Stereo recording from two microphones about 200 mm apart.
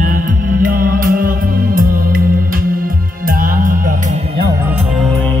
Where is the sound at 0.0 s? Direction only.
45° right (ahead or behind).